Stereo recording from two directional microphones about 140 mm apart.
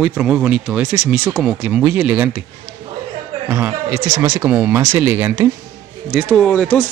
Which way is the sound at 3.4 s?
15° right (ahead or behind).